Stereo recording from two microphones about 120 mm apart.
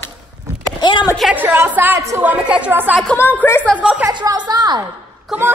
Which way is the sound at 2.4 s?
10° right (ahead or behind).